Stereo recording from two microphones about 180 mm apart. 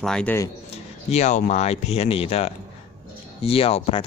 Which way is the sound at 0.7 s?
40° left (ahead or behind).